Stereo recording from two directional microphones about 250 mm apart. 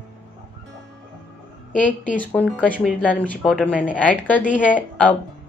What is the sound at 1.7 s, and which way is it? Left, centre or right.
Speech, left.